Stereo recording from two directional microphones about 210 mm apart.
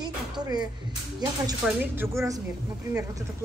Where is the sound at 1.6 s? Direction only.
10° right (ahead or behind).